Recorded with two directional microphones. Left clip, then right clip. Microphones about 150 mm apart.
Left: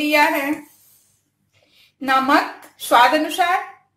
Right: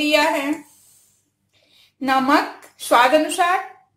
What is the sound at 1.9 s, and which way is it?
A woman's voice, 15° right (ahead or behind).